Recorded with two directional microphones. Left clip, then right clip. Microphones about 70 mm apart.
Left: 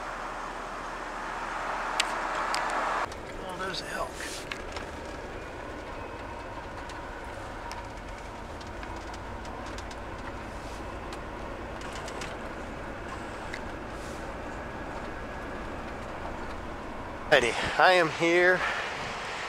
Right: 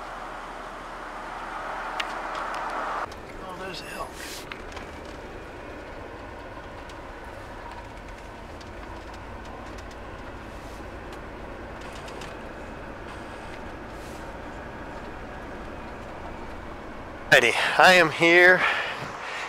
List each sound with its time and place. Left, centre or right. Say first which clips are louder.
1.7 s vehicle: left 2 dB; left
17.3 s speech: right 5 dB; right